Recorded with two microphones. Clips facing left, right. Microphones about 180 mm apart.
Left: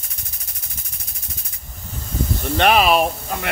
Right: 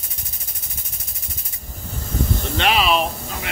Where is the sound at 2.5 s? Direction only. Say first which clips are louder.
Left 4 dB; 50° left (ahead or behind).